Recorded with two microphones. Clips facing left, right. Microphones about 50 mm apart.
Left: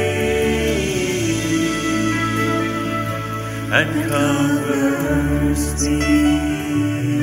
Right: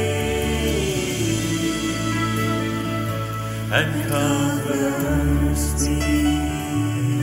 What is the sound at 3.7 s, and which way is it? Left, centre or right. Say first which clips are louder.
Music: left 4 dB; left.